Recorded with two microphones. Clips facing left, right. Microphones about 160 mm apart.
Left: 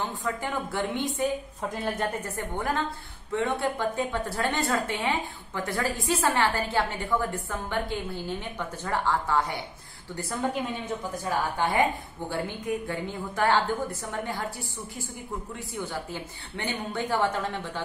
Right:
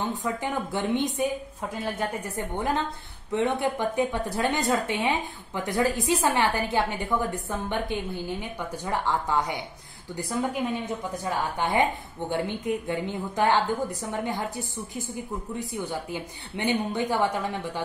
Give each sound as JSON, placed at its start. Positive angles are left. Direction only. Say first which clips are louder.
{"t": 0.2, "sound": "a woman's voice", "louder": "right 2 dB", "side_deg": -20}
{"t": 11.5, "sound": "a woman's voice", "louder": "right 1 dB", "side_deg": -20}
{"t": 15.7, "sound": "a woman's voice", "louder": "even", "side_deg": -15}